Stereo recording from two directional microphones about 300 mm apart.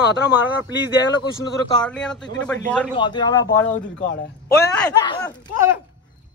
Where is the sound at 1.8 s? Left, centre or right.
Centre.